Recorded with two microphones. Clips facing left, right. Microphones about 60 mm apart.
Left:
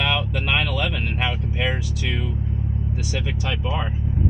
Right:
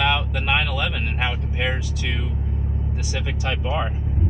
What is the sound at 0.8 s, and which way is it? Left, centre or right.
Speech, centre.